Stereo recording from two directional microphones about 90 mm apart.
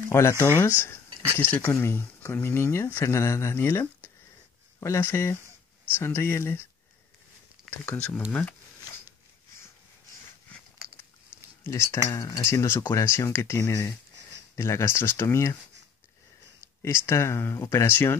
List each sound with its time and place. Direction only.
0.1 s speech: 30° left (ahead or behind)
7.7 s speech: 25° left (ahead or behind)
11.6 s speech: 30° left (ahead or behind)
16.8 s speech: 30° left (ahead or behind)